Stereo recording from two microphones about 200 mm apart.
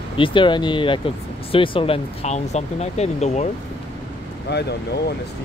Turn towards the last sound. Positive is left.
turn(degrees=55)  # may be behind; listen again after turning